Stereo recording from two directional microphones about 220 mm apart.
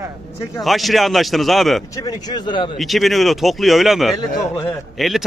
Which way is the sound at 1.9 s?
15° left (ahead or behind).